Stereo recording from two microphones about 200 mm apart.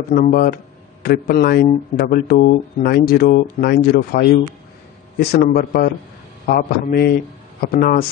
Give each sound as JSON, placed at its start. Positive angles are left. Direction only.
{"t": 0.1, "sound": "speech", "side_deg": 45}